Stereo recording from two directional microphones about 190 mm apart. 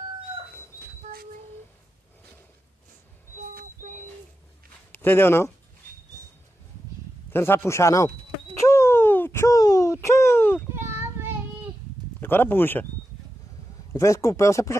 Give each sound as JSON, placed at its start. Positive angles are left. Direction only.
{"t": 3.3, "sound": "a sound", "side_deg": -45}
{"t": 4.9, "sound": "speech", "side_deg": 10}
{"t": 7.3, "sound": "speech", "side_deg": 10}
{"t": 8.5, "sound": "a sound", "side_deg": 15}
{"t": 10.7, "sound": "child singing", "side_deg": -15}
{"t": 12.2, "sound": "speech", "side_deg": 10}
{"t": 13.9, "sound": "speech", "side_deg": 15}